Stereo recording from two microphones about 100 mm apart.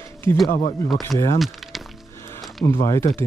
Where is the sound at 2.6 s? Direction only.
30° left (ahead or behind).